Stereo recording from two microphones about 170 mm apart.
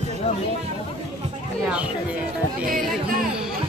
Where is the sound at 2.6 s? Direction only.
55° right (ahead or behind).